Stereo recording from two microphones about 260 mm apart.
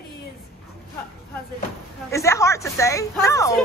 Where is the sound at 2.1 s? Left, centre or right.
Centre.